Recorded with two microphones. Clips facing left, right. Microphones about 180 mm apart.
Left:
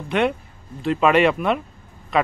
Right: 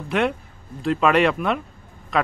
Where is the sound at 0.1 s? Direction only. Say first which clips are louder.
Left 1 dB; centre (ahead or behind).